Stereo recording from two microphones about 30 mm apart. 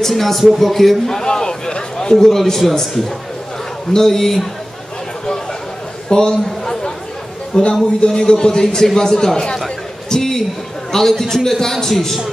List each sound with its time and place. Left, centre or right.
0.1 s a man's voice: centre
1.0 s a man's voice: centre
1.3 s a man's voice: left; by 2.6 s centre
3.9 s a man's voice: centre
6.0 s a sound: left
7.7 s a man's voice: left
10.0 s a sound: centre
10.9 s a man's voice: centre